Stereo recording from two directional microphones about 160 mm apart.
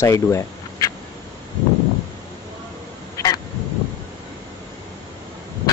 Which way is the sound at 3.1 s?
20° left (ahead or behind).